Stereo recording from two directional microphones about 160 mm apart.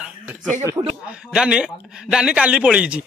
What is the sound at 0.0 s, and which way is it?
Chuckle, 5° right (ahead or behind).